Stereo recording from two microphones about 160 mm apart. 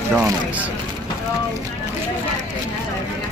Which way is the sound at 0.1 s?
10° right (ahead or behind).